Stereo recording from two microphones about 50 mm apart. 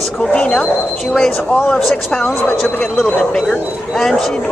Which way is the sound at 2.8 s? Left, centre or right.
Centre.